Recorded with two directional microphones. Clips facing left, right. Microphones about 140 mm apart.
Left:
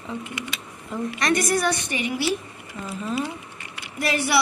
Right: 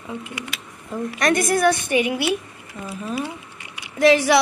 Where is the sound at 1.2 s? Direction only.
50° right (ahead or behind).